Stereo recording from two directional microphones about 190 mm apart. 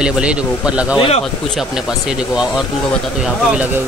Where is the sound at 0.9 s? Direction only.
30° left (ahead or behind).